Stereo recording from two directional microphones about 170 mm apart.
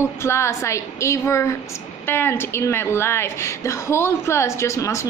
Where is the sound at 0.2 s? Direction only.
15° left (ahead or behind).